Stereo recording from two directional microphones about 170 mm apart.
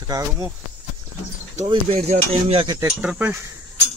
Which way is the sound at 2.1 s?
35° right (ahead or behind).